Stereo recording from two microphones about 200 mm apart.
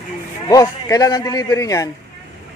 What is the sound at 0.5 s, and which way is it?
A man's voice, 15° left (ahead or behind).